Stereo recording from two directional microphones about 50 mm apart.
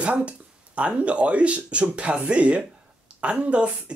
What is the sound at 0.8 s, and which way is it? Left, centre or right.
Speech, right.